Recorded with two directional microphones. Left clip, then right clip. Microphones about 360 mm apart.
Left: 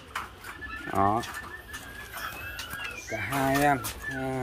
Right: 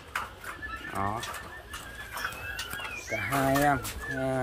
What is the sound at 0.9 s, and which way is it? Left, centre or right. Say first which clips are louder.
Speech: left 8 dB; left.